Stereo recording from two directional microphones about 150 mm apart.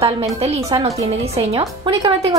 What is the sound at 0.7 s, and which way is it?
Speech, 30° right (ahead or behind).